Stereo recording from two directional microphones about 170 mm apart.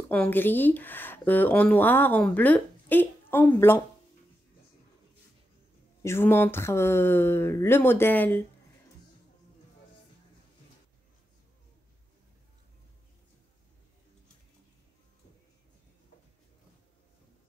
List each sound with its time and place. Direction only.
0.1 s speech: 10° left (ahead or behind)
6.0 s speech: 15° left (ahead or behind)